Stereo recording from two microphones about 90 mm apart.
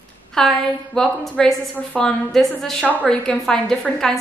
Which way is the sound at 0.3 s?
5° left (ahead or behind).